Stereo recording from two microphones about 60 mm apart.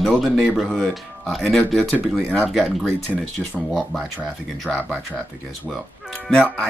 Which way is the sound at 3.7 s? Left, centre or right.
Centre.